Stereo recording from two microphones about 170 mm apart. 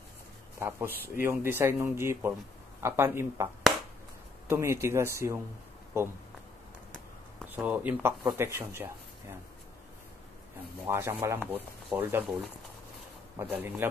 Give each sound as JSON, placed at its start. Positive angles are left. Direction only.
{"t": 0.6, "sound": "speech", "side_deg": -15}
{"t": 4.5, "sound": "speech", "side_deg": -15}
{"t": 7.4, "sound": "speech", "side_deg": -10}
{"t": 10.9, "sound": "speech", "side_deg": -15}
{"t": 13.4, "sound": "speech", "side_deg": -10}